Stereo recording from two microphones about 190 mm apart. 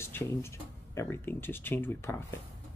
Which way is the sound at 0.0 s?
15° left (ahead or behind).